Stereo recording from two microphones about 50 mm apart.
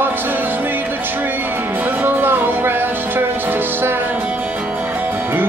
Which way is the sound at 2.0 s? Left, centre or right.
Right.